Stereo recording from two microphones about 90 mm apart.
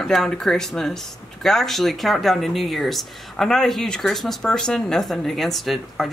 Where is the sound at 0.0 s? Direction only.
5° left (ahead or behind).